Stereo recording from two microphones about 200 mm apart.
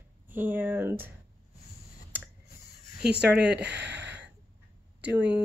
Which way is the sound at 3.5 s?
60° right (ahead or behind).